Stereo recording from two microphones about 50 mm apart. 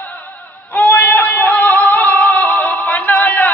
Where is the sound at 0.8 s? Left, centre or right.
Left.